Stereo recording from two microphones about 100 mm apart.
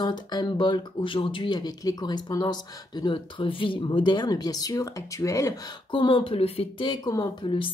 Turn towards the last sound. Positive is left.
turn(degrees=60)  # may be behind; listen again after turning